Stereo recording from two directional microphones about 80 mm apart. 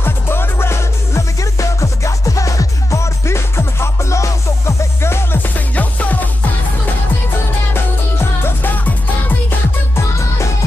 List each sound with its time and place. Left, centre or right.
0.0 s music: left